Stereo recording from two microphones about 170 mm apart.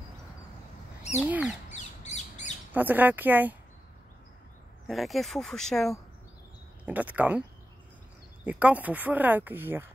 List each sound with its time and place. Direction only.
1.2 s speech: 10° right (ahead or behind)
1.7 s squawk: 45° left (ahead or behind)
2.7 s speech: 10° right (ahead or behind)
4.8 s speech: centre (ahead or behind)
6.9 s speech: 10° right (ahead or behind)
8.5 s speech: 10° right (ahead or behind)